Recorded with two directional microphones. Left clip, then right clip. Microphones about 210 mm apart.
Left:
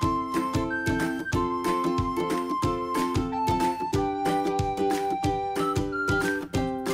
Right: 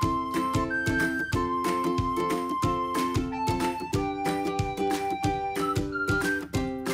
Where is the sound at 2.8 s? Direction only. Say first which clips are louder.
Left 1 dB; centre (ahead or behind).